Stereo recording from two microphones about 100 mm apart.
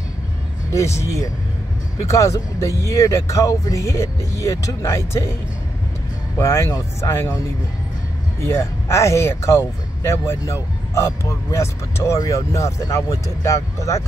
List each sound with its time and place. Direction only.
0.7 s speech: 30° left (ahead or behind)
6.3 s speech: 25° left (ahead or behind)
8.5 s speech: 30° left (ahead or behind)